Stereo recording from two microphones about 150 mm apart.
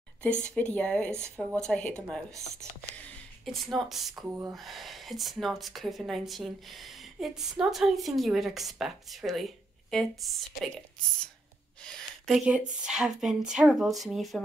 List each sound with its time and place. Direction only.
0.2 s speech: 5° left (ahead or behind)
3.4 s speech: centre (ahead or behind)
4.3 s speech: 20° right (ahead or behind)
4.6 s speech: centre (ahead or behind)
11.8 s speech: centre (ahead or behind)